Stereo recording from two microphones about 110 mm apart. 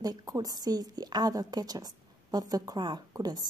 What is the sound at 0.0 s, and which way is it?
Speech, 35° right (ahead or behind).